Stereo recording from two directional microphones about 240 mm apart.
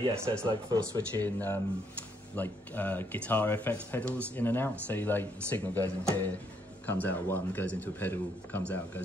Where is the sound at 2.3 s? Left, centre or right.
Centre.